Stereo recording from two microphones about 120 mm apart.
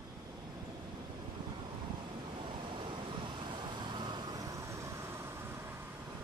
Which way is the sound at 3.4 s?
40° right (ahead or behind).